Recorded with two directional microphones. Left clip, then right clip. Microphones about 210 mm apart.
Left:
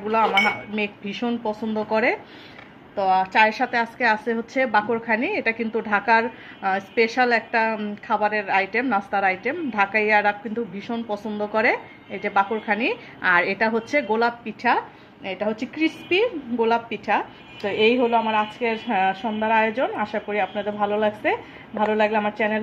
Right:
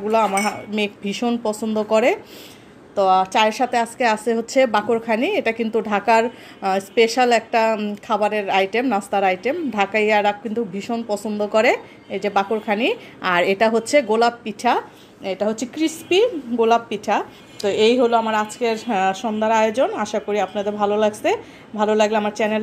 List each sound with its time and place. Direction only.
0.1 s a woman's voice: 40° right (ahead or behind)